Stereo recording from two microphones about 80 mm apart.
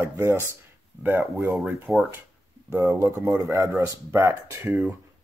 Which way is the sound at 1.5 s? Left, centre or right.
Centre.